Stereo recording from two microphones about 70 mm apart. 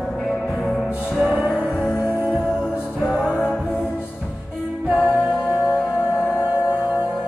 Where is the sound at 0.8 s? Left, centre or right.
Centre.